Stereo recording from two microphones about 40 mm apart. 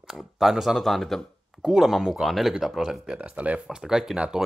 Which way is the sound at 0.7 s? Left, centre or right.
Centre.